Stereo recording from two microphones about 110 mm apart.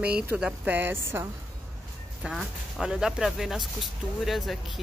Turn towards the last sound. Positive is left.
turn(degrees=0)  # may be behind; listen again after turning